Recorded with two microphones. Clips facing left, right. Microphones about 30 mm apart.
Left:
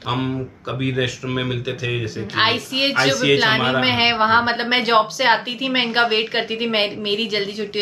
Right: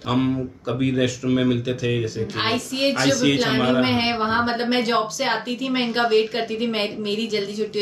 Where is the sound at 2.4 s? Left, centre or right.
Left.